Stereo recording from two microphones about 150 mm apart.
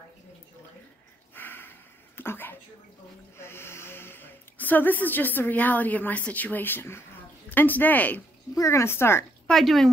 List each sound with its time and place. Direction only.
1.3 s a sound: 15° left (ahead or behind)
3.3 s speech: 15° left (ahead or behind)
9.5 s speech: centre (ahead or behind)